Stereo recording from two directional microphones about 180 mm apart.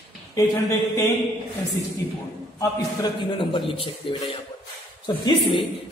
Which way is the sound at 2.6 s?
25° left (ahead or behind).